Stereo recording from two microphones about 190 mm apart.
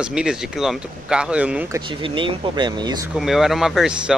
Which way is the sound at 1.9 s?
25° right (ahead or behind).